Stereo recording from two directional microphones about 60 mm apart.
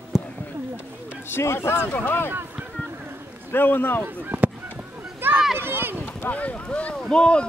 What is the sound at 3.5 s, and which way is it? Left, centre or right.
Speech, left.